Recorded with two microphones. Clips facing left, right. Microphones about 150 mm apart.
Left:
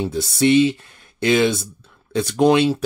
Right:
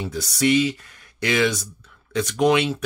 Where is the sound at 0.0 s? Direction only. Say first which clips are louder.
Left 4 dB; 25° left (ahead or behind).